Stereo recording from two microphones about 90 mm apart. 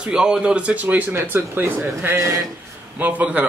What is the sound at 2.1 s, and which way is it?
Speech, 35° right (ahead or behind).